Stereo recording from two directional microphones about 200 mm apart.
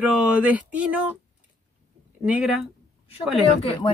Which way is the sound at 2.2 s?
5° right (ahead or behind).